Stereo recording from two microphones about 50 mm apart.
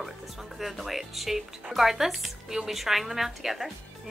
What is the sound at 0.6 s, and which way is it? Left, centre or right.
Speech, centre.